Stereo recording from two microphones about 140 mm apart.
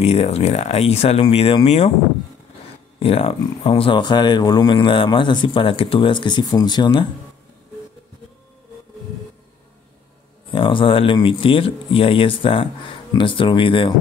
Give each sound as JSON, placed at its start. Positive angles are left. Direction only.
{"t": 0.0, "sound": "speech", "side_deg": 45}
{"t": 3.0, "sound": "speech", "side_deg": 45}
{"t": 10.5, "sound": "speech", "side_deg": 35}